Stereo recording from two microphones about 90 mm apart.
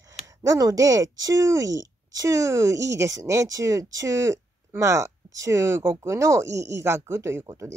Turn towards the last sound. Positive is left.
turn(degrees=-30)  # may be behind; listen again after turning